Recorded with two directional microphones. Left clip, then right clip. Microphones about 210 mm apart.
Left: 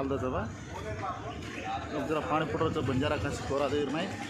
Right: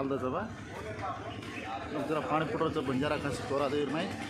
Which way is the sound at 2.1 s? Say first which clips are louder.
Left 1 dB; 5° left (ahead or behind).